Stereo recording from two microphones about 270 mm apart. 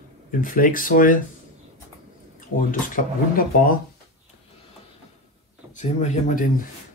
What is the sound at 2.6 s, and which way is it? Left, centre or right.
Speech, left.